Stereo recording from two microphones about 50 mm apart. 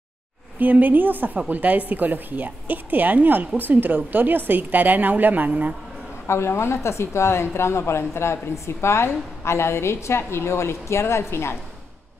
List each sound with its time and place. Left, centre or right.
0.6 s a woman's voice: right
6.2 s a woman's voice: left